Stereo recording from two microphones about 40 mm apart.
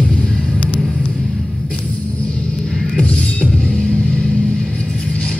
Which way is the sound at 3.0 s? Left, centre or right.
Left.